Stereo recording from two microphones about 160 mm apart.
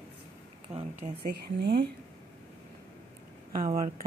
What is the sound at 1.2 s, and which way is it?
Speech, 80° right.